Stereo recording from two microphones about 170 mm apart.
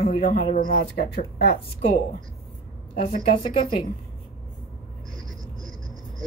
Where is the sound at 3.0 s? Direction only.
30° left (ahead or behind).